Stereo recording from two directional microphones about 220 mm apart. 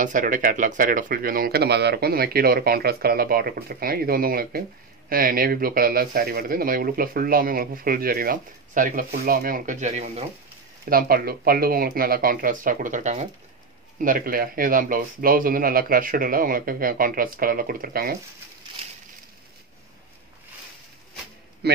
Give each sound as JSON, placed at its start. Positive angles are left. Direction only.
{"t": 0.0, "sound": "speech", "side_deg": -35}
{"t": 10.9, "sound": "speech", "side_deg": -40}
{"t": 21.6, "sound": "a man's voice", "side_deg": -45}